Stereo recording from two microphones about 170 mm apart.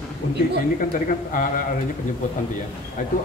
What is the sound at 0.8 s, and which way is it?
Speech, 50° left (ahead or behind).